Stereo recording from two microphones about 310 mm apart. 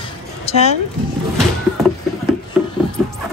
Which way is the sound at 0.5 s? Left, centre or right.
Centre.